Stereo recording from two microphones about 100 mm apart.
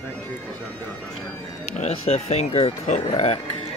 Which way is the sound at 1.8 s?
90° left.